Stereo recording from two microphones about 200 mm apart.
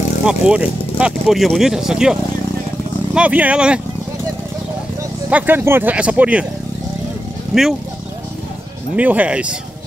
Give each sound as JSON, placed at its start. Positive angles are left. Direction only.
{"t": 0.2, "sound": "speech", "side_deg": -5}
{"t": 3.2, "sound": "speech", "side_deg": -5}
{"t": 5.3, "sound": "speech", "side_deg": -10}
{"t": 8.9, "sound": "speech", "side_deg": -10}